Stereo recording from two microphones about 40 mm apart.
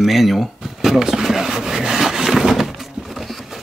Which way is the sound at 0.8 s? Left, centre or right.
Centre.